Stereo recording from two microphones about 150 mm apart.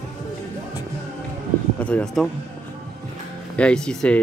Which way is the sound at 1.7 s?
10° left (ahead or behind).